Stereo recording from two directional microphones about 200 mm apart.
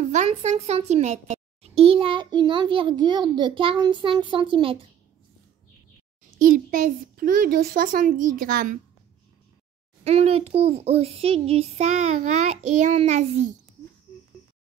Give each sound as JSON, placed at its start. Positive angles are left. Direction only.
{"t": 0.1, "sound": "a child's voice", "side_deg": -35}
{"t": 6.3, "sound": "a child's voice", "side_deg": -40}
{"t": 10.0, "sound": "a child's voice", "side_deg": -30}